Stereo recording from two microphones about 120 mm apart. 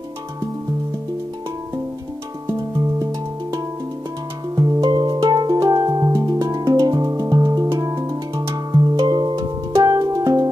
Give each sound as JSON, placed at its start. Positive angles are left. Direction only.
{"t": 4.6, "sound": "music", "side_deg": -30}